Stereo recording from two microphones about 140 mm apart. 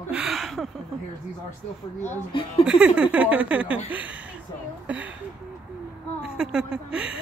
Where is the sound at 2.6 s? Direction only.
10° right (ahead or behind).